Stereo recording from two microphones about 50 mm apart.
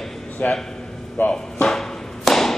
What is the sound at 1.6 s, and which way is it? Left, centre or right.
Tap, centre.